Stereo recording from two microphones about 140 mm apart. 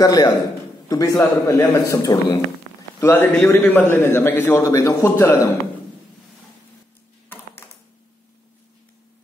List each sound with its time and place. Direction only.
0.0 s a man's voice: 25° left (ahead or behind)
7.2 s typing: 15° left (ahead or behind)